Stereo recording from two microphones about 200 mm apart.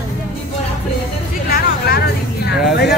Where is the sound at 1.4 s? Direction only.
50° left (ahead or behind).